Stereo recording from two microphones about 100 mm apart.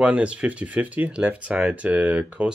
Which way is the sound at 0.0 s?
10° right (ahead or behind).